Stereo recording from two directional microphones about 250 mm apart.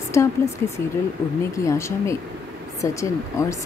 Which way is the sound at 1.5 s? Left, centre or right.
Centre.